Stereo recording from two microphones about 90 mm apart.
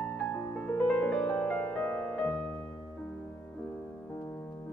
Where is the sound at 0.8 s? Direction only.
10° left (ahead or behind).